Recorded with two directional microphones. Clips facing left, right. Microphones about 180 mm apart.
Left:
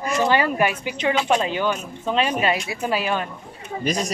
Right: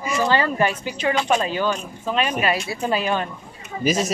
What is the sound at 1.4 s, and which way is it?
Speech, 20° left (ahead or behind).